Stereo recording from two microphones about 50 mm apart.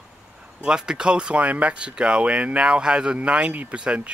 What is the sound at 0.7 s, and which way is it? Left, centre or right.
Speech, centre.